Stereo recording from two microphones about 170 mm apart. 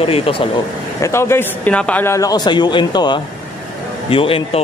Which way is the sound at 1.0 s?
15° left (ahead or behind).